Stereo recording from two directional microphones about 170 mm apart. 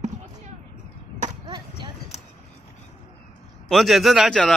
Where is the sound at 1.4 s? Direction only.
25° right (ahead or behind).